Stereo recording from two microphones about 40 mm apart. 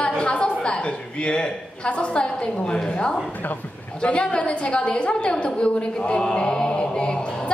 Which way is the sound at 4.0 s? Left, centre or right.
Left.